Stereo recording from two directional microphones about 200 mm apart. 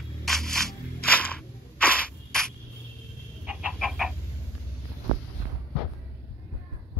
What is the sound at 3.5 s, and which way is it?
Chicken, 5° right (ahead or behind).